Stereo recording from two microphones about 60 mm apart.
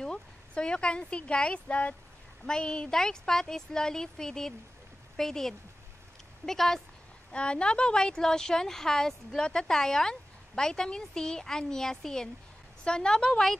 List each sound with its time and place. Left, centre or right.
0.0 s a woman's voice: centre